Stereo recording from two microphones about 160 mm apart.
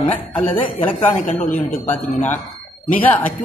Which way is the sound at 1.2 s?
55° left (ahead or behind).